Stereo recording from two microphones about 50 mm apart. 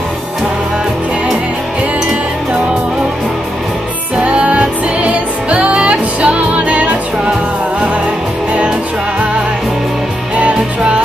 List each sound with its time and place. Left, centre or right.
4.2 s music: right
10.3 s music: right